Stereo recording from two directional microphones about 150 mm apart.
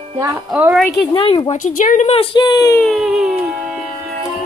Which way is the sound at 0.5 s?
5° right (ahead or behind).